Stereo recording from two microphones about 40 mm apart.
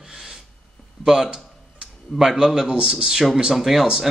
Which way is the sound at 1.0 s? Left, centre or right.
Centre.